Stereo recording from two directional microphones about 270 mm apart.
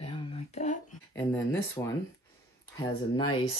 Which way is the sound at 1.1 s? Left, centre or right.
Centre.